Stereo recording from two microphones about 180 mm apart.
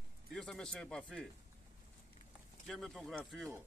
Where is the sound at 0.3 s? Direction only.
5° left (ahead or behind).